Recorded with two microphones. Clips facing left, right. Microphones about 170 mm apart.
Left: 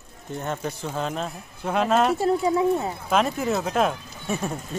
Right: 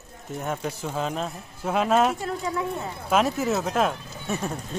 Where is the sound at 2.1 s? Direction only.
30° left (ahead or behind).